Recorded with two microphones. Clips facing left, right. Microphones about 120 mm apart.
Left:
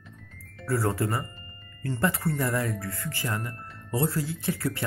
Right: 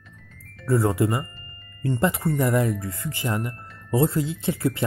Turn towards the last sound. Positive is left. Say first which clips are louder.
# right 5 dB
turn(degrees=-20)  # may be behind; listen again after turning